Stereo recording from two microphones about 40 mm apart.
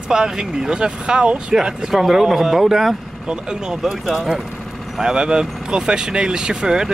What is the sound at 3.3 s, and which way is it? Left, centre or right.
Speech, right.